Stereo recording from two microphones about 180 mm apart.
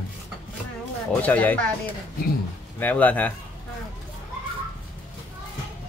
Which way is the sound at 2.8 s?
10° left (ahead or behind).